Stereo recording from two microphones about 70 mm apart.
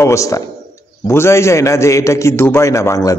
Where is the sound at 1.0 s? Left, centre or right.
Left.